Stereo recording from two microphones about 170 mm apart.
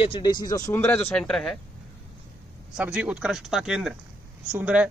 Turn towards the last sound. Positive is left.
turn(degrees=-10)  # may be behind; listen again after turning